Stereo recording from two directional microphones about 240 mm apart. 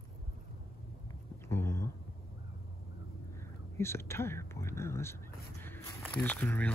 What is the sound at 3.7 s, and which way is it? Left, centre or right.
Speech, centre.